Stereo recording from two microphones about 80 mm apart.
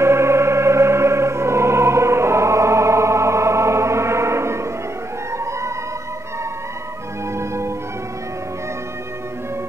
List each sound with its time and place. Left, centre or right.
0.0 s music: right
7.3 s music: right